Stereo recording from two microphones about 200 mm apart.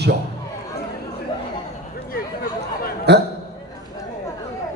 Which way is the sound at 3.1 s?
55° right (ahead or behind).